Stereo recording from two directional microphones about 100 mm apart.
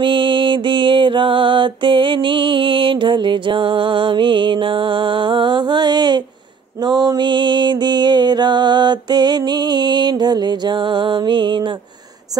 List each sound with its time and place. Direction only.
0.0 s mantra: 55° right (ahead or behind)
6.8 s music: 45° right (ahead or behind)